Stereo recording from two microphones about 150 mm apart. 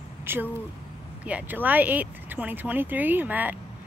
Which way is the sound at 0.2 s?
15° right (ahead or behind).